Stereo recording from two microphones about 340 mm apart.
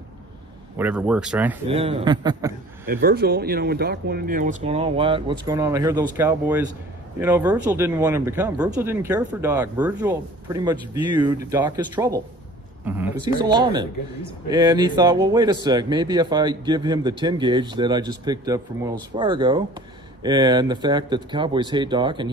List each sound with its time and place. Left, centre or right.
0.7 s speech: centre
1.7 s speech: centre
2.9 s speech: right